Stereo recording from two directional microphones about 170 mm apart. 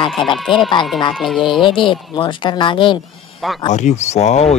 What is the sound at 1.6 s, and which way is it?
Speech, 30° left (ahead or behind).